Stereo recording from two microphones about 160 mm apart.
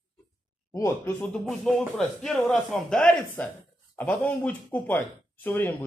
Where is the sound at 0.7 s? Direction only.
20° left (ahead or behind).